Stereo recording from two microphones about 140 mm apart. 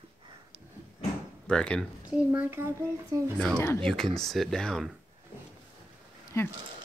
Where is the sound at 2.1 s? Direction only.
15° right (ahead or behind).